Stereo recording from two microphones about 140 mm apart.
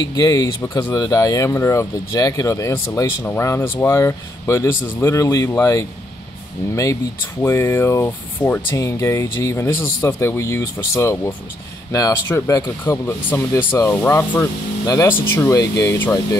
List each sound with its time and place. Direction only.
0.1 s speech: 25° left (ahead or behind)